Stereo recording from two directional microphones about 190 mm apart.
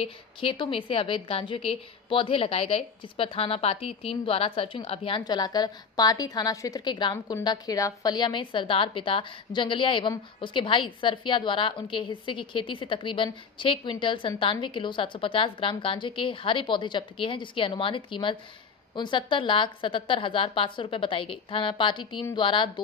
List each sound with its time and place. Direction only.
0.0 s a woman's voice: 25° left (ahead or behind)